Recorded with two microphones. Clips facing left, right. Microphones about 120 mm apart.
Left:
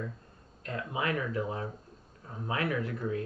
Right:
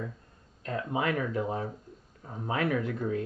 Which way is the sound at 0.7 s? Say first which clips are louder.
Right 3 dB; 30° right (ahead or behind).